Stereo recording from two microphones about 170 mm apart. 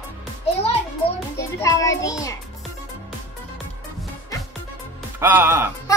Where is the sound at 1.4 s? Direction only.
20° left (ahead or behind).